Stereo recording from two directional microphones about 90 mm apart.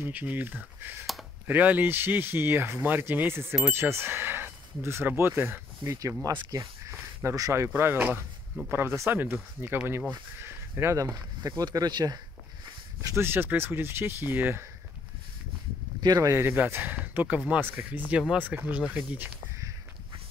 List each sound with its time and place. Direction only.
0.0 s speech: 20° right (ahead or behind)
6.3 s speech: 40° right (ahead or behind)
13.0 s speech: 30° right (ahead or behind)
16.0 s speech: 45° right (ahead or behind)
16.3 s speech: 25° right (ahead or behind)